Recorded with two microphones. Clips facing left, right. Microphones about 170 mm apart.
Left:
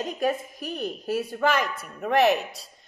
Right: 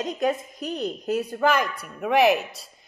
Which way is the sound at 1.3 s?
Centre (ahead or behind).